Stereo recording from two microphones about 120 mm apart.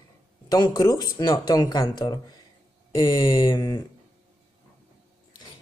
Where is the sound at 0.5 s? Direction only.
30° left (ahead or behind).